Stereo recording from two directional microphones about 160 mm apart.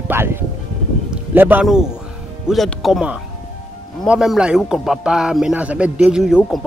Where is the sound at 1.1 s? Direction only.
10° right (ahead or behind).